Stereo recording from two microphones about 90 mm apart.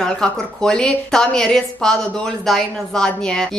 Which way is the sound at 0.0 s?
5° left (ahead or behind).